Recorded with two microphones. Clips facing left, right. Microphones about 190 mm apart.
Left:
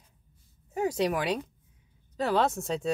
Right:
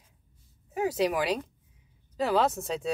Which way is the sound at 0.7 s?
5° right (ahead or behind).